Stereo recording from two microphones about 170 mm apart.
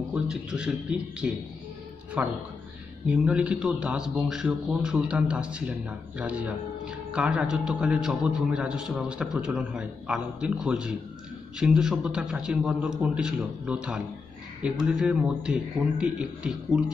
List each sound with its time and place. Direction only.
0.1 s a man's voice: 5° right (ahead or behind)